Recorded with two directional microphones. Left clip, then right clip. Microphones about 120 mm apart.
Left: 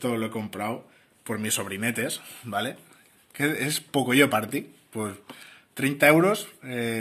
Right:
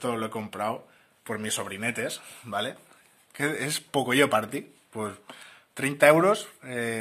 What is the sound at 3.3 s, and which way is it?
Speech, 40° right (ahead or behind).